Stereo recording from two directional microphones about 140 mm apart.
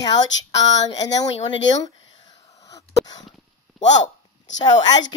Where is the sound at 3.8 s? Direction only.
55° left (ahead or behind).